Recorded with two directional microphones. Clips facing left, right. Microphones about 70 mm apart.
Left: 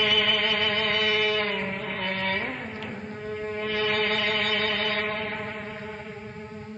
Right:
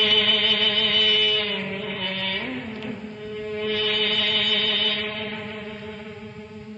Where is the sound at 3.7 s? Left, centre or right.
Left.